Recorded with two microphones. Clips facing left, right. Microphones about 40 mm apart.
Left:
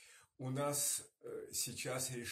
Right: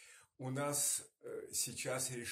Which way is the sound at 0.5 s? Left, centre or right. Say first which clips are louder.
Even; left.